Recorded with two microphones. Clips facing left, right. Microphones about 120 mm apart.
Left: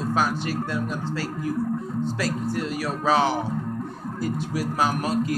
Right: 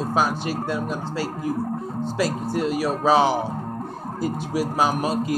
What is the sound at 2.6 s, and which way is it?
Speech, 15° right (ahead or behind).